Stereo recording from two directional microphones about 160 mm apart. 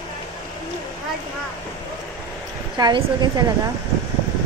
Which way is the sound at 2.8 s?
25° right (ahead or behind).